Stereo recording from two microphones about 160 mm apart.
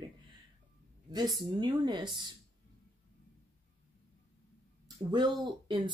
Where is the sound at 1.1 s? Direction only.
25° right (ahead or behind).